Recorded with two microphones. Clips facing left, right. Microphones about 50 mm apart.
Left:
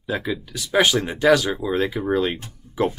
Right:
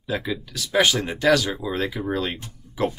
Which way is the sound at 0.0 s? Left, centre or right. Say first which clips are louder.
Left 1 dB; centre.